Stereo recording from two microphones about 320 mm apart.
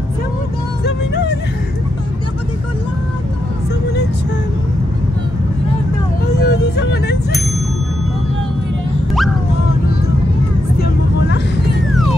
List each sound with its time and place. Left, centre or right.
6.4 s vehicle: left